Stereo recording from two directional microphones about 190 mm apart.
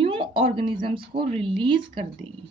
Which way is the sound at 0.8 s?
25° right (ahead or behind).